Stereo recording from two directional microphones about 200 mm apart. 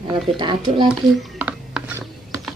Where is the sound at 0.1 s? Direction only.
25° right (ahead or behind).